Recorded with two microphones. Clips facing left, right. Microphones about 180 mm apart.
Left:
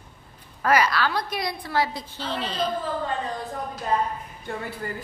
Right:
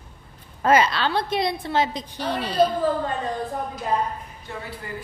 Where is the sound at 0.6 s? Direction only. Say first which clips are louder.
Right 2 dB; 25° right (ahead or behind).